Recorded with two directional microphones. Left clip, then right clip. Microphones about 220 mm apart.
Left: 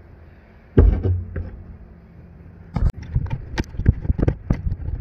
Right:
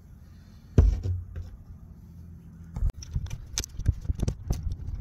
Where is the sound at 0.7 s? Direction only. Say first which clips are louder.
Left 11 dB; 50° right (ahead or behind).